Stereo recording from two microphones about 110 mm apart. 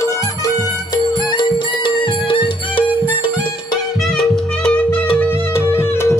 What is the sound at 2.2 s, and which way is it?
Music, 50° left (ahead or behind).